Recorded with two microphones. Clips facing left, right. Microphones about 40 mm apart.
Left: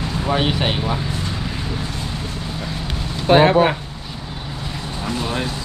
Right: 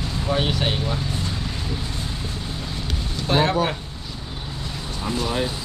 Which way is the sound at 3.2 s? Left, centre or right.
Left.